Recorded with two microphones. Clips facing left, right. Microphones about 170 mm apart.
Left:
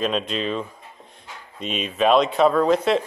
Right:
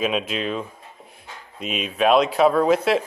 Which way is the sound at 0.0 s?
5° right (ahead or behind).